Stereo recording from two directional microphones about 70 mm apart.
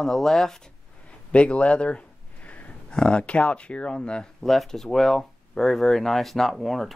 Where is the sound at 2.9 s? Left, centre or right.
Centre.